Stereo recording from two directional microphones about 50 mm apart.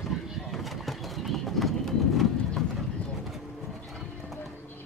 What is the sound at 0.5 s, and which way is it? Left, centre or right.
Bird, centre.